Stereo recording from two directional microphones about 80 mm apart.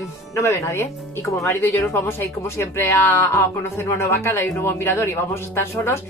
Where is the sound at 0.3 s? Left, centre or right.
Left.